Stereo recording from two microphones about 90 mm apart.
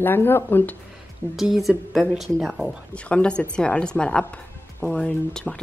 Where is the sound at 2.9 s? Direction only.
15° left (ahead or behind).